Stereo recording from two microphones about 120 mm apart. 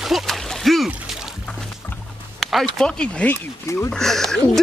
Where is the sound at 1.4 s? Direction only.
10° left (ahead or behind).